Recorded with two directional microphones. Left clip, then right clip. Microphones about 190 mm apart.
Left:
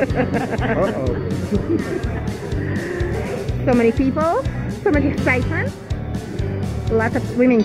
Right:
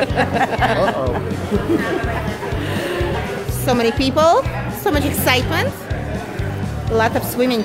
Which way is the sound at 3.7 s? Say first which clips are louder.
Even; 25° right (ahead or behind).